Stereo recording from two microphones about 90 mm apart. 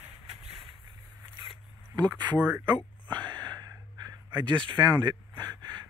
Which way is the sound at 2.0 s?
55° right (ahead or behind).